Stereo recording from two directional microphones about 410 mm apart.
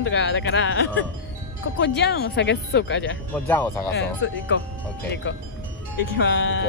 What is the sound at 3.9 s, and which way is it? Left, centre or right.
Speech, left.